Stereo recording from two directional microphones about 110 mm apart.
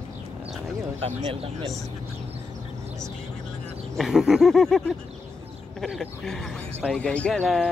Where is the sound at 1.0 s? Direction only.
60° right (ahead or behind).